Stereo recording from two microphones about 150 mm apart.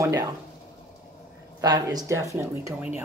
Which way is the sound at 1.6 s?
25° right (ahead or behind).